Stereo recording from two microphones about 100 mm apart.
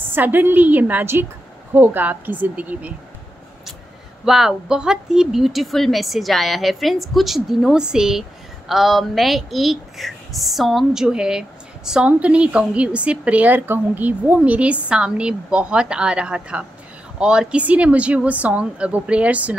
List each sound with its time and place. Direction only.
0.1 s a woman's voice: 20° right (ahead or behind)
4.2 s speech: 5° right (ahead or behind)